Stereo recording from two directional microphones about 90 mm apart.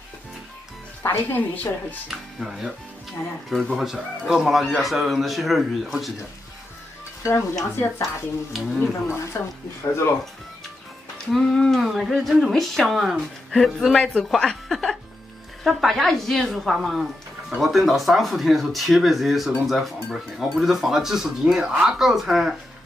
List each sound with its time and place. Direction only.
1.0 s a woman's voice: 20° left (ahead or behind)
2.0 s speech: 5° right (ahead or behind)
7.2 s stir: 35° left (ahead or behind)
8.5 s speech: centre (ahead or behind)
9.3 s a woman's voice: 30° left (ahead or behind)
11.3 s speech: 5° left (ahead or behind)